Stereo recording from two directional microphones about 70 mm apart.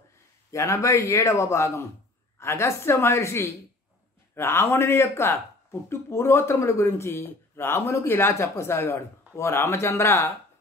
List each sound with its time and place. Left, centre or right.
0.5 s a man's voice: left